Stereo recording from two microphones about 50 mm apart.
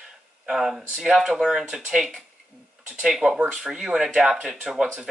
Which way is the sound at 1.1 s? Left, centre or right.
Centre.